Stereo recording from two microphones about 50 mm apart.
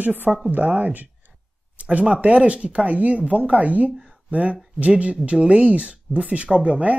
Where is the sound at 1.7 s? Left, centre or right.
Right.